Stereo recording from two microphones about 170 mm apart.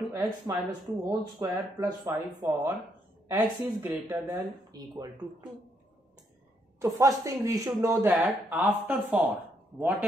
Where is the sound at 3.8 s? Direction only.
20° right (ahead or behind).